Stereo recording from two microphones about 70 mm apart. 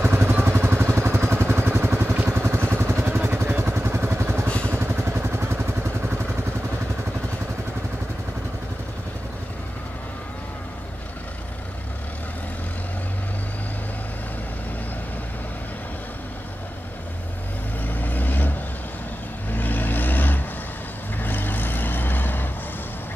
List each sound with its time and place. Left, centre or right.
0.0 s vehicle: right
4.5 s vehicle: centre
4.7 s vehicle: right
17.8 s vehicle: left
19.5 s vehicle: left